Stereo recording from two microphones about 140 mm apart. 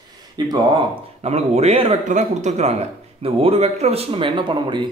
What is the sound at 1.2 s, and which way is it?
Speech, 50° right (ahead or behind).